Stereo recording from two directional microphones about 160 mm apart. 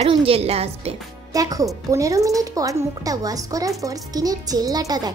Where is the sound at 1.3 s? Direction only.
20° right (ahead or behind).